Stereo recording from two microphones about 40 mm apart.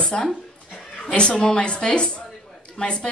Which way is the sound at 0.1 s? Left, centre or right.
Left.